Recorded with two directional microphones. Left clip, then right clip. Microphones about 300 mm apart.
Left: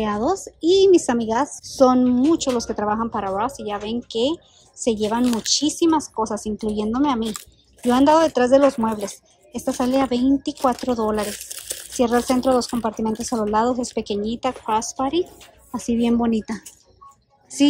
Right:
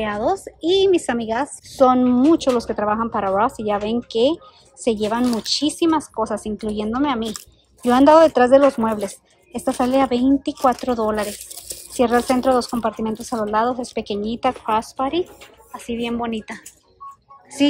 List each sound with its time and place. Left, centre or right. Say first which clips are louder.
0.0 s speech: right 1 dB; centre
11.2 s speech: left 1 dB; centre
12.5 s speech: right 1 dB; centre